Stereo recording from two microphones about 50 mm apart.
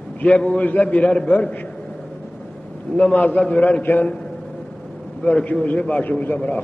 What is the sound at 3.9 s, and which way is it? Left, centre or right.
Speech, left.